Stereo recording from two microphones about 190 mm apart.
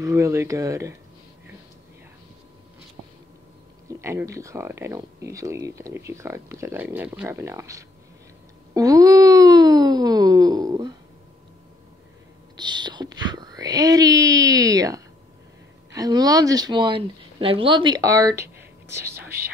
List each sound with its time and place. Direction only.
0.0 s speech: 15° right (ahead or behind)
4.0 s speech: 15° right (ahead or behind)
8.7 s wail: 20° right (ahead or behind)
12.5 s whispering: 25° right (ahead or behind)
15.9 s speech: 20° right (ahead or behind)